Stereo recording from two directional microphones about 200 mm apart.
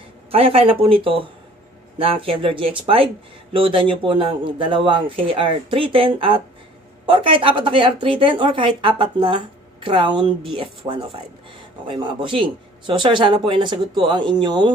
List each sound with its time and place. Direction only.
0.3 s speech: 30° right (ahead or behind)